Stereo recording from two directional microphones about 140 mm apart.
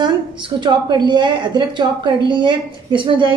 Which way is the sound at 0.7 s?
30° right (ahead or behind).